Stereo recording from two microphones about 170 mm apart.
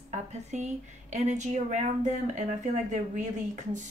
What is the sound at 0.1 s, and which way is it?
A woman's voice, 45° right (ahead or behind).